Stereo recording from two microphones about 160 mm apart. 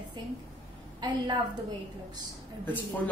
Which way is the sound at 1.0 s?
30° right (ahead or behind).